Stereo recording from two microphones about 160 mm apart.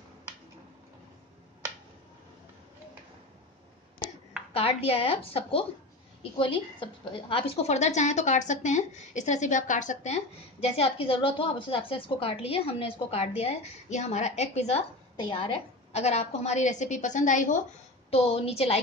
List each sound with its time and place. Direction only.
4.6 s a woman's voice: 35° left (ahead or behind)
18.1 s a woman's voice: 40° left (ahead or behind)